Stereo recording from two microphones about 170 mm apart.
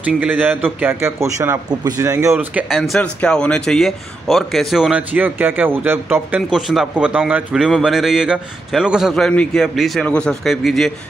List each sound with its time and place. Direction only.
0.0 s a man's voice: 10° right (ahead or behind)
2.7 s a man's voice: centre (ahead or behind)
6.5 s a man's voice: centre (ahead or behind)